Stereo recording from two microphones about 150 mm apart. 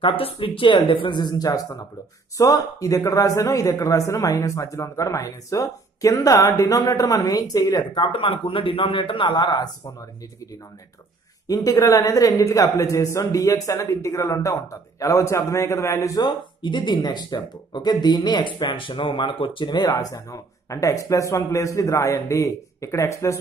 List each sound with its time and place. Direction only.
0.0 s a man's voice: 35° left (ahead or behind)
11.4 s a man's voice: 25° left (ahead or behind)